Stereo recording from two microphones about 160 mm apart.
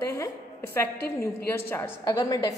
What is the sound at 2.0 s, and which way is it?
Speech, 25° left (ahead or behind).